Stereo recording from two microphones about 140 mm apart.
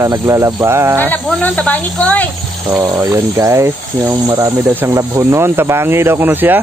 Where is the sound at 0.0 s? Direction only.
20° right (ahead or behind).